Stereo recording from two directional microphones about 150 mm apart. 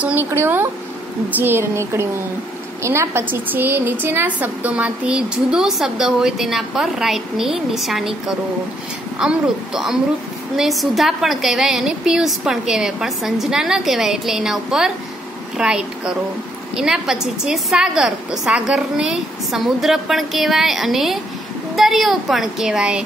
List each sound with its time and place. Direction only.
0.0 s a woman's voice: 10° right (ahead or behind)
9.2 s a woman's voice: 5° right (ahead or behind)